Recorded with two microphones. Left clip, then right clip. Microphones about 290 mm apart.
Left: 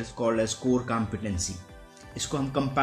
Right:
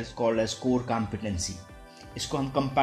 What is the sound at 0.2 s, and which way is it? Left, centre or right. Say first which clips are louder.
Speech: even; centre.